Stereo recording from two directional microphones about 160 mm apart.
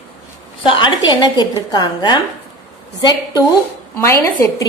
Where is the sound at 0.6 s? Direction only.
30° left (ahead or behind).